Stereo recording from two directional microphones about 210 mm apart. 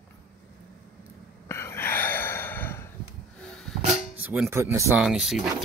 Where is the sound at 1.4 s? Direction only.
15° left (ahead or behind).